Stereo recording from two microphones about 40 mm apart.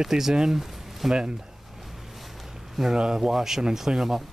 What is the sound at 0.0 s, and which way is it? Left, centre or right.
Speech, centre.